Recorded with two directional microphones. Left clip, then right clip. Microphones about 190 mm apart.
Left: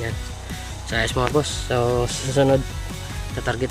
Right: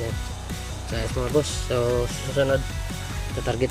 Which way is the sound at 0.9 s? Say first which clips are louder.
Left 4 dB; 5° right (ahead or behind).